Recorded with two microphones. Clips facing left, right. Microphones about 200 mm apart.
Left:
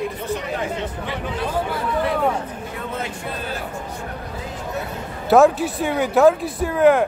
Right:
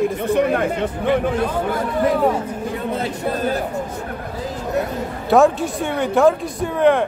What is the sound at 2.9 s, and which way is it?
Speech, 35° right (ahead or behind).